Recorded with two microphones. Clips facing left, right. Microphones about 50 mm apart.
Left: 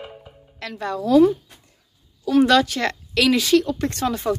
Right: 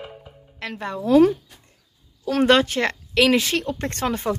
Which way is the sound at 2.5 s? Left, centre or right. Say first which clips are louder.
Even; right.